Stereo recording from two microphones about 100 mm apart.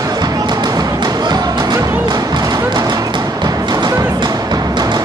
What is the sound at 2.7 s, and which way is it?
Music, 40° right (ahead or behind).